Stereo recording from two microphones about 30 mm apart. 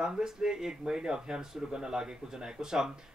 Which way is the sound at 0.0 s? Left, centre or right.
Right.